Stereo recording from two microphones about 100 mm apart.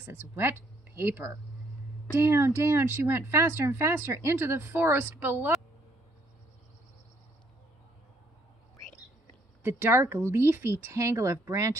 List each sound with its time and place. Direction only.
0.0 s speech: 25° right (ahead or behind)
9.6 s speech: 20° right (ahead or behind)